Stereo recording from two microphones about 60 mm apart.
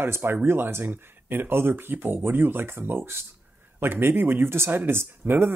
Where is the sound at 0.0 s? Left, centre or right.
Right.